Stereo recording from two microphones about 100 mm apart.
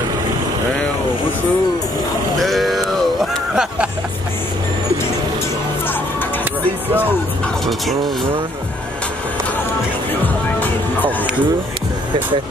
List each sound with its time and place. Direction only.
2.3 s sheep: centre (ahead or behind)
3.5 s speech: 10° right (ahead or behind)
10.2 s music: 15° left (ahead or behind)